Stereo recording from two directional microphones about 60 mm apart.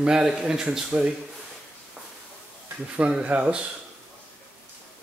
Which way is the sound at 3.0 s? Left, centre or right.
Right.